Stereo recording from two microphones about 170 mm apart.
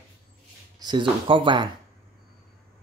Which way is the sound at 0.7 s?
25° right (ahead or behind).